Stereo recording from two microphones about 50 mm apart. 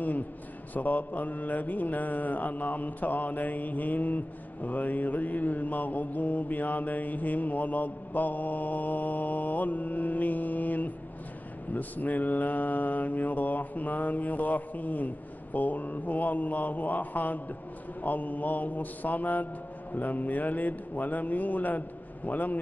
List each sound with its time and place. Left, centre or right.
0.7 s mantra: left